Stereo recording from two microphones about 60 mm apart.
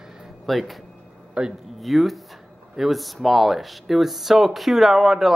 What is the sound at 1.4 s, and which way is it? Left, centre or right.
Speech, centre.